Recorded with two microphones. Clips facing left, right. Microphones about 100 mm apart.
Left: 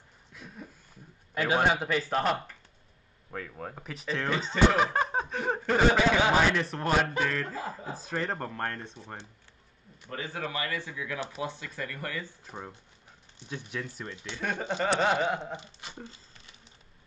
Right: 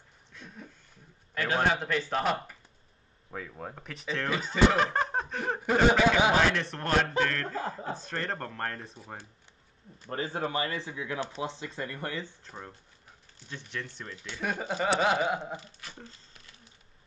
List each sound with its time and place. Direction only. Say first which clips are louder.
0.3 s a sound: left 1 dB; 5° left (ahead or behind)
1.3 s speech: left 2 dB; 15° left (ahead or behind)
5.6 s speech: right 1 dB; 15° right (ahead or behind)
6.3 s speech: left 1 dB; 5° left (ahead or behind)
10.0 s speech: right 3 dB; 35° right (ahead or behind)
12.4 s speech: left 2 dB; 10° left (ahead or behind)
14.4 s speech: even; 10° right (ahead or behind)
15.5 s speech: left 1 dB; 20° left (ahead or behind)